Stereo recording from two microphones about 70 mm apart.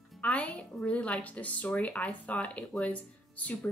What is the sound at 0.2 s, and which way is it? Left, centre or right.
Speech, centre.